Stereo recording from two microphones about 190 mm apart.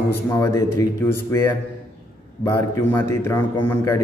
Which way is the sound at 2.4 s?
15° left (ahead or behind).